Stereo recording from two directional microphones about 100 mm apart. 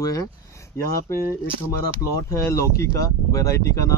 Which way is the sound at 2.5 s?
30° left (ahead or behind).